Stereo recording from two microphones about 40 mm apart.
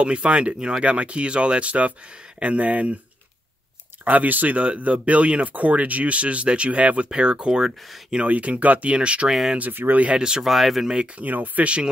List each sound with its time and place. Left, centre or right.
0.0 s speech: right
4.0 s speech: right; by 8.2 s centre
8.2 s speech: right
8.9 s speech: right
9.6 s speech: right
10.1 s speech: centre
10.4 s speech: centre
11.1 s speech: right
11.6 s speech: right